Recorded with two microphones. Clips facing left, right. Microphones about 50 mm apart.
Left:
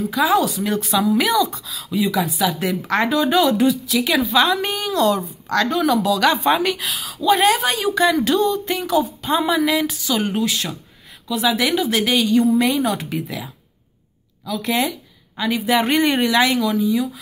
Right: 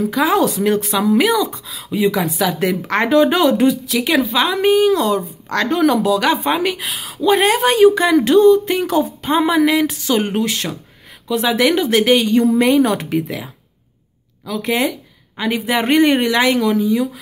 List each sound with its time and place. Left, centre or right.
0.1 s speech: right
2.9 s speech: right
5.5 s speech: right
12.8 s a woman's voice: right